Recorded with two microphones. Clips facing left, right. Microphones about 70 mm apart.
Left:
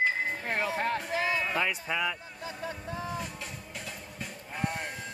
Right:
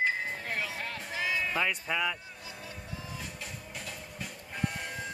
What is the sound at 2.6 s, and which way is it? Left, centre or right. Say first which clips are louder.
Music: left 9 dB; left.